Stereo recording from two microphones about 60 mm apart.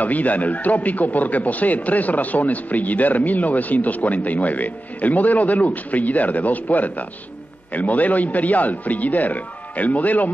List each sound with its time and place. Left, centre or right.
0.0 s speech: left